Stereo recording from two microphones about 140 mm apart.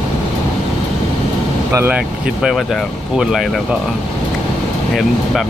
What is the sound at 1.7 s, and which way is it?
Speech, 15° right (ahead or behind).